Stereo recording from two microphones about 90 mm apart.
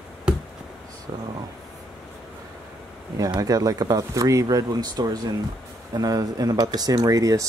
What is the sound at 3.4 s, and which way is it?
Speech, 45° right (ahead or behind).